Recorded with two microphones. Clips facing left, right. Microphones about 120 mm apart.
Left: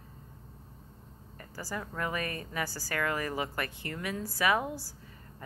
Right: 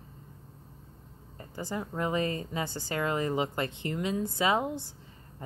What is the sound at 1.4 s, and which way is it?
A woman's voice, 20° right (ahead or behind).